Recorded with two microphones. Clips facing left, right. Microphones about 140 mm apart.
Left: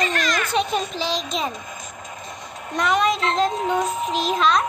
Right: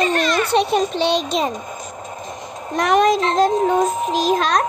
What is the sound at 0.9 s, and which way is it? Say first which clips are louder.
Speech: right 7 dB; 65° right (ahead or behind).